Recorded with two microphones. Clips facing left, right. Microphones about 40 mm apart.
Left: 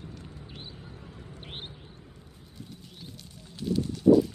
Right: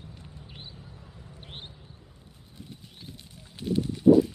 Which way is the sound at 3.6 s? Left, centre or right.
Right.